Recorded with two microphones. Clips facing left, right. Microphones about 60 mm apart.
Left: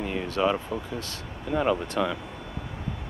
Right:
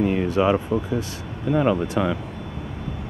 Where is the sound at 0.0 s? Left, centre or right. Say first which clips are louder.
Right 6 dB; centre.